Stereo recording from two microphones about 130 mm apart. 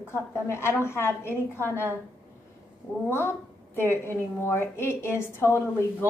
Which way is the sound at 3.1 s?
15° left (ahead or behind).